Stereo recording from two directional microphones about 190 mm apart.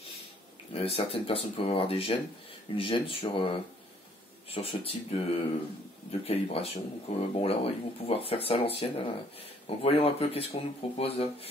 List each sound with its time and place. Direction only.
0.7 s speech: 30° left (ahead or behind)
4.5 s speech: 30° left (ahead or behind)